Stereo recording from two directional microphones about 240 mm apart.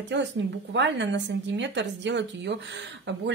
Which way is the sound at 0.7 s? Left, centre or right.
Right.